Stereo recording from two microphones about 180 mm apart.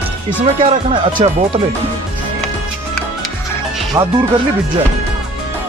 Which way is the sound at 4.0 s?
20° right (ahead or behind).